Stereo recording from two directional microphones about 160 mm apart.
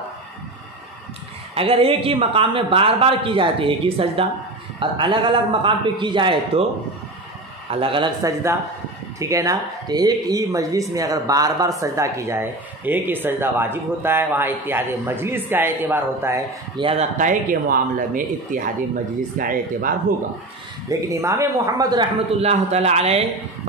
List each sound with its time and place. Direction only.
1.5 s a woman's voice: 40° right (ahead or behind)
7.7 s a woman's voice: 35° right (ahead or behind)
9.2 s speech: 20° right (ahead or behind)
16.7 s speech: 35° right (ahead or behind); by 20.0 s 60° right (ahead or behind)
21.1 s a woman's voice: 20° right (ahead or behind)
22.4 s a woman's voice: 40° right (ahead or behind)